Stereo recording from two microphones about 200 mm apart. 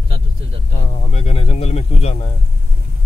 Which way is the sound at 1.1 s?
30° left (ahead or behind).